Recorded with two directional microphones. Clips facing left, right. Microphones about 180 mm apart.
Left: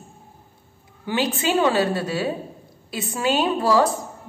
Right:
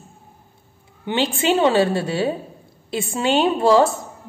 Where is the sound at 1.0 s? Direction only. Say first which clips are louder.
Right 3 dB; 25° right (ahead or behind).